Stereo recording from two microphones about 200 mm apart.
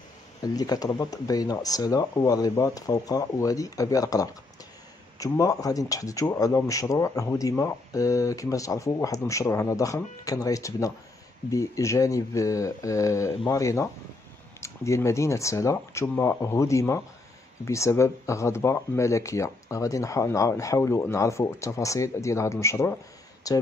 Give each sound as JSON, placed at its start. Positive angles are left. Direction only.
{"t": 0.4, "sound": "speech", "side_deg": 20}